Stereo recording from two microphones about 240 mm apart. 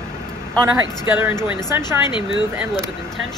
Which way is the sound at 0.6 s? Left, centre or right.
Centre.